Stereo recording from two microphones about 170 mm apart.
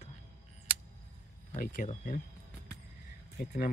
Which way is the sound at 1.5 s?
50° left (ahead or behind).